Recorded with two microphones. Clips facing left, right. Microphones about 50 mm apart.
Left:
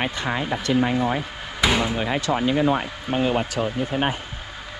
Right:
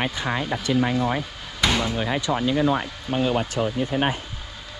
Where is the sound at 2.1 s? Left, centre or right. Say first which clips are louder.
Even; left.